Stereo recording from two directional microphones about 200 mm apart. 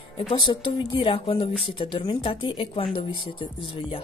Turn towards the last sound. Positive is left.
turn(degrees=25)  # may be behind; listen again after turning